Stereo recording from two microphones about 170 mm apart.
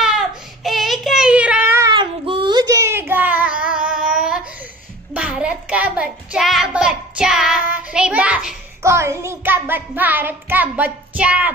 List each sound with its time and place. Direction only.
0.7 s child singing: centre (ahead or behind)
1.9 s child singing: 30° right (ahead or behind); by 4.0 s 5° right (ahead or behind)
4.1 s a sound: 5° right (ahead or behind)
5.1 s child singing: 5° right (ahead or behind)
8.8 s child singing: 15° right (ahead or behind)